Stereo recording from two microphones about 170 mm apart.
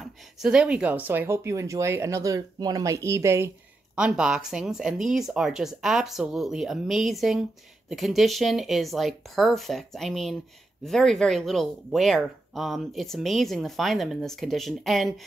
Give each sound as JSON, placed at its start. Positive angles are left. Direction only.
{"t": 0.0, "sound": "speech", "side_deg": -5}